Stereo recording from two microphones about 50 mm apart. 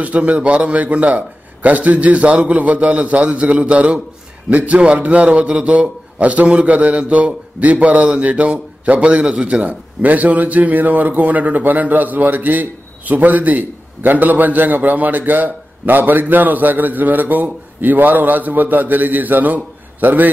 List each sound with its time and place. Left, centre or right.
0.0 s a man's voice: right
9.7 s speech: right